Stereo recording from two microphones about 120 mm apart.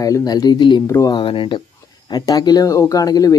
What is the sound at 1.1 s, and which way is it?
Speech, 45° left (ahead or behind).